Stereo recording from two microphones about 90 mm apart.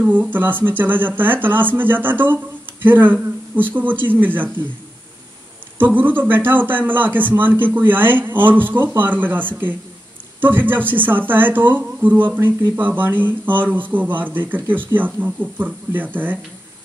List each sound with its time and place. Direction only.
0.0 s speech: 15° right (ahead or behind)
5.8 s speech: 20° right (ahead or behind)